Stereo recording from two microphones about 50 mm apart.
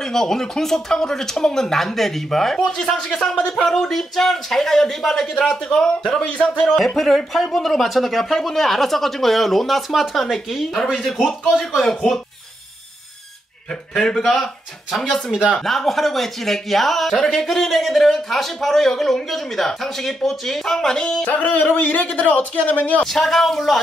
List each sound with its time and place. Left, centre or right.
0.0 s speech: centre
11.8 s speech: centre
13.9 s speech: centre
15.5 s speech: centre
21.3 s a man's voice: left
23.0 s speech: centre